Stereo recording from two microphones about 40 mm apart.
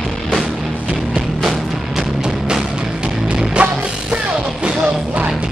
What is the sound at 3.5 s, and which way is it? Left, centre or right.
Music, right.